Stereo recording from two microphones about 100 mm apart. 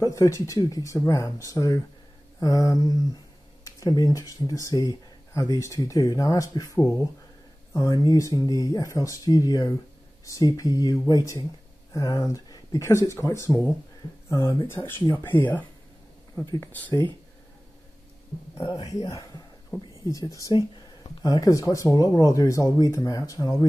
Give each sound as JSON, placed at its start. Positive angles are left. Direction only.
{"t": 0.0, "sound": "speech", "side_deg": 35}
{"t": 15.0, "sound": "speech", "side_deg": 20}
{"t": 18.6, "sound": "speech", "side_deg": 40}